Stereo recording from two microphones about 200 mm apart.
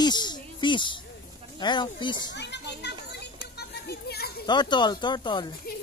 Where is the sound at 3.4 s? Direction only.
55° left (ahead or behind).